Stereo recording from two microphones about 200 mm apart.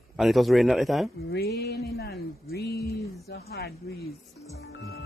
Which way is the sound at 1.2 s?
55° left (ahead or behind).